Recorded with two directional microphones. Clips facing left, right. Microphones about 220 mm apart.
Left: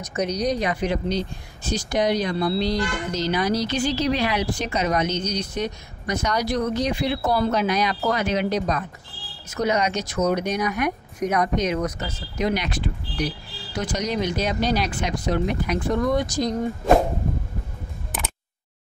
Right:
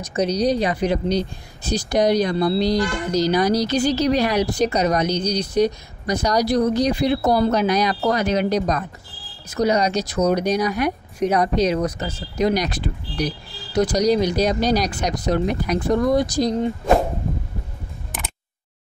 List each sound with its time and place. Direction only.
0.0 s speech: 30° right (ahead or behind)